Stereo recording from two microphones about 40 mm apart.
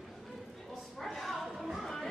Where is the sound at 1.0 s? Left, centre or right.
Centre.